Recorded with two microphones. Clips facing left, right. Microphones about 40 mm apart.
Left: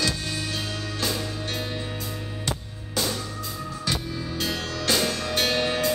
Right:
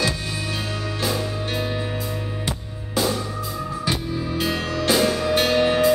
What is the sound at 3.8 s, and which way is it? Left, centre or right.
Music, centre.